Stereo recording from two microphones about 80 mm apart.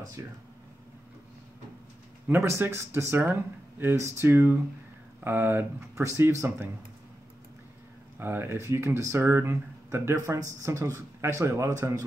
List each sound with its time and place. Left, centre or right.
2.2 s speech: right
8.2 s speech: right